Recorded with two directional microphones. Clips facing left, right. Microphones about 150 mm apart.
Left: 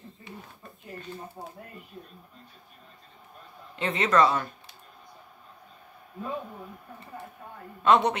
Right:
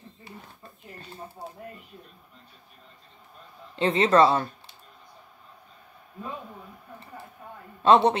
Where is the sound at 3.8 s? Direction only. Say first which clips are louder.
Right 4 dB; 30° right (ahead or behind).